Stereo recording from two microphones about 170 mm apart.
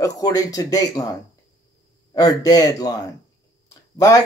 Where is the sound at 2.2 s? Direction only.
20° left (ahead or behind).